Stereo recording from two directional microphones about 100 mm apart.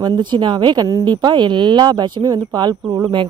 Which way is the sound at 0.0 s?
50° right (ahead or behind).